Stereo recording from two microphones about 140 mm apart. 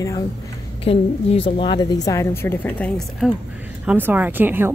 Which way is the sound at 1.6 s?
30° left (ahead or behind).